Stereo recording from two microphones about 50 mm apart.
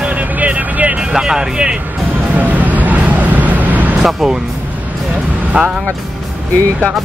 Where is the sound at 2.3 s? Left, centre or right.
Right.